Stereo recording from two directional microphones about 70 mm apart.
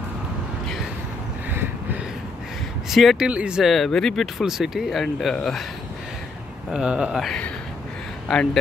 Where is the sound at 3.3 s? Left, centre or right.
Centre.